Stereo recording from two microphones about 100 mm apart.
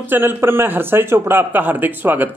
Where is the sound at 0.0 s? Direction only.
20° right (ahead or behind).